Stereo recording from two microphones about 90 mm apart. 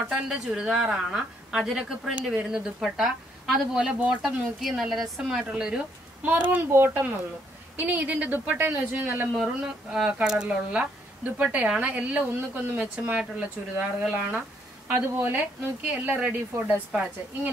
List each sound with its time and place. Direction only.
0.1 s a woman's voice: 10° right (ahead or behind)
6.5 s a woman's voice: 25° right (ahead or behind)
9.4 s a woman's voice: 5° right (ahead or behind)
14.9 s a woman's voice: 25° right (ahead or behind)